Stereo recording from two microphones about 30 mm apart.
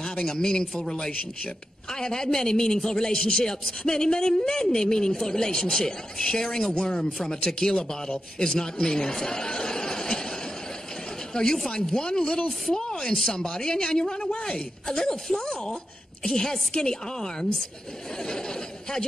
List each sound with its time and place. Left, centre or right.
0.0 s a man's voice: left
6.7 s a man's voice: left
11.7 s a man's voice: left